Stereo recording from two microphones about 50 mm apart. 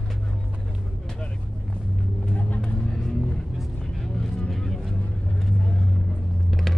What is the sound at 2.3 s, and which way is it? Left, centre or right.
Vehicle, left.